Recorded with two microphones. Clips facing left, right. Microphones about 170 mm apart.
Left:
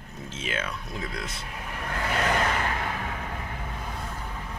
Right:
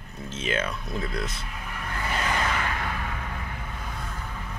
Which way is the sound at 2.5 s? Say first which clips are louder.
Left 1 dB; 25° left (ahead or behind).